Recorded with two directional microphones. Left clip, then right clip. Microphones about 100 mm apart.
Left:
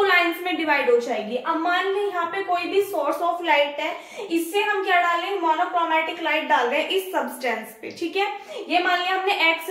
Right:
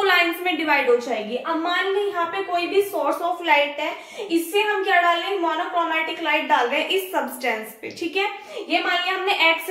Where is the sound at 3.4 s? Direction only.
30° right (ahead or behind).